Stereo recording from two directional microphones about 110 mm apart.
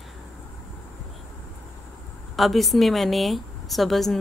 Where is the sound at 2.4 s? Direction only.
Centre (ahead or behind).